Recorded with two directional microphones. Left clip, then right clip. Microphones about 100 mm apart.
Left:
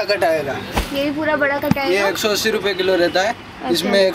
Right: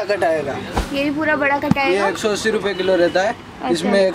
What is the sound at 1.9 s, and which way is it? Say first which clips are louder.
Speech: left 2 dB; 5° right (ahead or behind).